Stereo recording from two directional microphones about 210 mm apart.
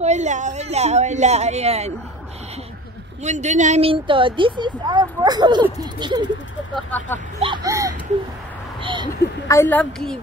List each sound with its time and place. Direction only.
0.0 s speech: 35° right (ahead or behind)
3.3 s speech: 35° right (ahead or behind)
6.7 s a woman's voice: 10° left (ahead or behind)
7.4 s a sound: 20° right (ahead or behind)
9.5 s a woman's voice: 10° left (ahead or behind)